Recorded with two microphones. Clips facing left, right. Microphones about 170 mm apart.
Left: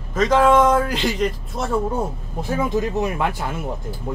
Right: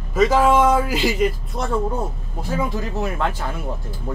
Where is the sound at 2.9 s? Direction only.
15° left (ahead or behind).